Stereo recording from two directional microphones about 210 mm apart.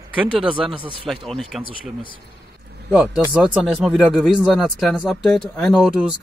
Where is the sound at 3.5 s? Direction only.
Centre (ahead or behind).